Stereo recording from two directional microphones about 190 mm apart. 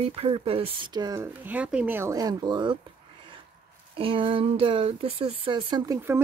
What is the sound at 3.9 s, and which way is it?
Speech, 30° right (ahead or behind).